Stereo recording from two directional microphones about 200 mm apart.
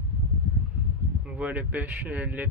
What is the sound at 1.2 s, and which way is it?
Speech, 5° right (ahead or behind).